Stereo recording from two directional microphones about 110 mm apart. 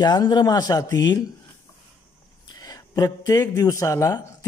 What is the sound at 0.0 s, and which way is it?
A man's voice, 40° left (ahead or behind).